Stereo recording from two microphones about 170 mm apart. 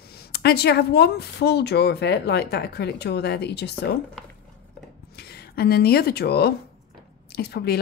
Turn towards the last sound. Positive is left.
turn(degrees=70)  # may be behind; listen again after turning